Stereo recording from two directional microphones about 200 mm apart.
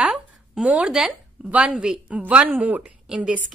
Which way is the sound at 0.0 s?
5° right (ahead or behind).